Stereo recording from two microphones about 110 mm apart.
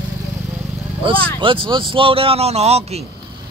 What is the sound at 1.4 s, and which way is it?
Speech, 50° right (ahead or behind).